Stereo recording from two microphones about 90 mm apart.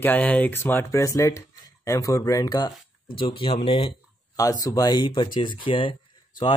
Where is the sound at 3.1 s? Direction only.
70° left (ahead or behind); by 3.9 s 90° left.